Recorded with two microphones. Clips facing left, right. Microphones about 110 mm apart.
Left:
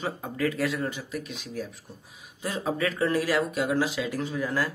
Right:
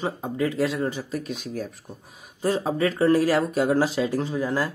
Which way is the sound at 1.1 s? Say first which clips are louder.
Right 5 dB; 45° right (ahead or behind).